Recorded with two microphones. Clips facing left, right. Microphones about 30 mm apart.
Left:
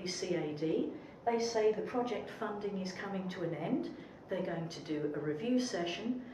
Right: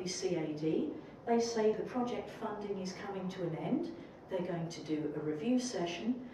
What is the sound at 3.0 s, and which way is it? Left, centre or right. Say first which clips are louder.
Speech: left 1 dB; centre.